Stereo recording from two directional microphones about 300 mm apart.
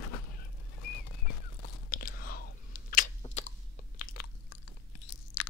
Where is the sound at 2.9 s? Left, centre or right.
Left.